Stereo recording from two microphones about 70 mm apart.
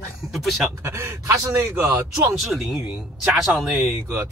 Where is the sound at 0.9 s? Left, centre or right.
Right.